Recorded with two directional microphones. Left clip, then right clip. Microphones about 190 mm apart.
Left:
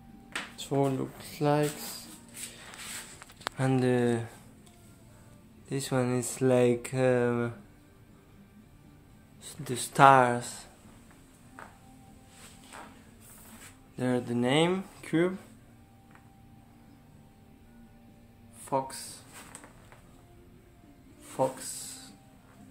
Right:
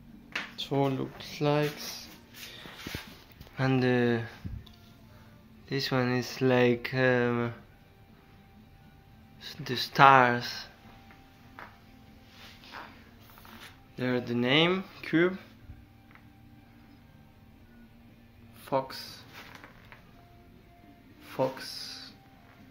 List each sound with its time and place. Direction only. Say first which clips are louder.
0.6 s speech: even; 5° left (ahead or behind)
3.5 s speech: right 1 dB; 5° left (ahead or behind)
5.7 s speech: right 1 dB; 5° left (ahead or behind)
9.4 s speech: right 4 dB; 15° left (ahead or behind)
13.9 s speech: even; 20° left (ahead or behind)
18.7 s speech: right 1 dB; 5° right (ahead or behind)
21.4 s a sound: left 1 dB; centre (ahead or behind)